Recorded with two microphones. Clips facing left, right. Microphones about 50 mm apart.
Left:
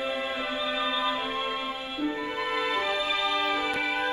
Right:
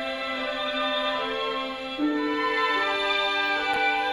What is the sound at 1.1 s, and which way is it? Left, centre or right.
Music, right.